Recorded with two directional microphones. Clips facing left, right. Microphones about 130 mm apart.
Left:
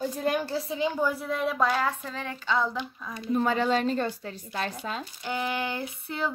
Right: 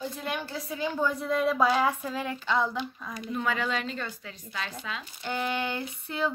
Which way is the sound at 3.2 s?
30° left (ahead or behind).